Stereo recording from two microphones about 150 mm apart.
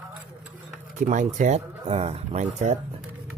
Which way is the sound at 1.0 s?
55° right (ahead or behind).